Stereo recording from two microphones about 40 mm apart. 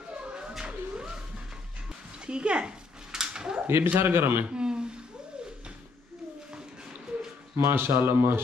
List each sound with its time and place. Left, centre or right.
0.2 s music: right
3.1 s a sound: centre
3.6 s speech: right
4.0 s speech: right
4.5 s a sound: right
7.5 s speech: right